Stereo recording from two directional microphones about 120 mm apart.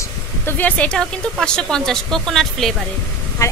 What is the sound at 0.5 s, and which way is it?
A woman's voice, 15° left (ahead or behind).